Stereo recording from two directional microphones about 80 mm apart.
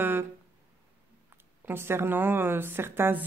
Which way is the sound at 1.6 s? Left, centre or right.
Right.